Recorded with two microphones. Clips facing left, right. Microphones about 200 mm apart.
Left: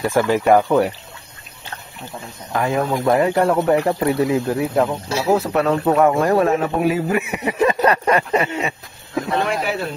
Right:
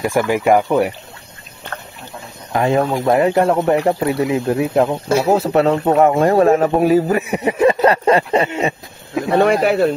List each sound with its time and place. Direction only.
0.0 s speech: 15° right (ahead or behind)
2.5 s speech: 25° right (ahead or behind)
5.0 s speech: 55° right (ahead or behind)
5.3 s speech: 30° right (ahead or behind)
6.5 s speech: 40° right (ahead or behind)
9.3 s speech: 60° right (ahead or behind)